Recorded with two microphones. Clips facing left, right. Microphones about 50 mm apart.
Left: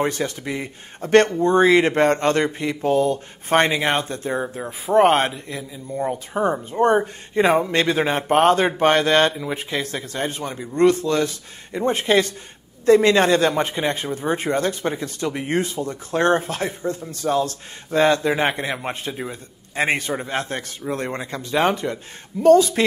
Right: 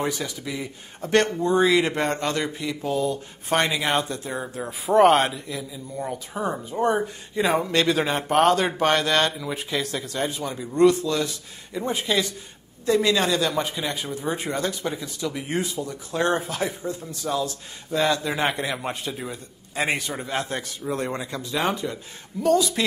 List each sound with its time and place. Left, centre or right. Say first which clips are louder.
0.2 s speech: left 5 dB; left
4.3 s speech: left 5 dB; centre
6.7 s speech: left 5 dB; centre
7.4 s a man's voice: left 6 dB; left
7.7 s speech: left 2 dB; left